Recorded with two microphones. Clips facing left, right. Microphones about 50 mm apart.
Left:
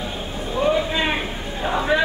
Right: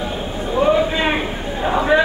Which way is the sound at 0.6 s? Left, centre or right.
Centre.